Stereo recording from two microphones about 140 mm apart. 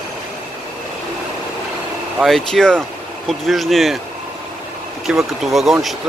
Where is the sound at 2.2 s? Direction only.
5° left (ahead or behind).